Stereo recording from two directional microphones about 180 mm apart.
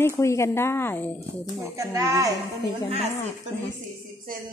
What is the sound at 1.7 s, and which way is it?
Speech, 15° right (ahead or behind).